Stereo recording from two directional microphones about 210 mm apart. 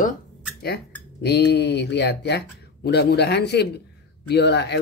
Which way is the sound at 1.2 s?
50° left (ahead or behind).